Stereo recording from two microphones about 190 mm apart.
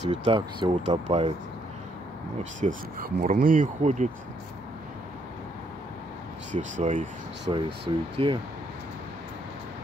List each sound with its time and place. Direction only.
0.1 s speech: 25° right (ahead or behind)
2.6 s speech: 50° right (ahead or behind)
6.5 s speech: 40° right (ahead or behind)
7.5 s speech: 25° right (ahead or behind)